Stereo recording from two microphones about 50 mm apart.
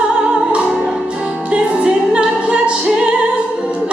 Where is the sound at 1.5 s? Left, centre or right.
Right.